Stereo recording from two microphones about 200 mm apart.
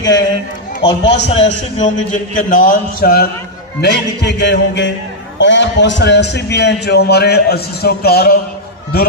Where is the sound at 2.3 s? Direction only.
40° left (ahead or behind).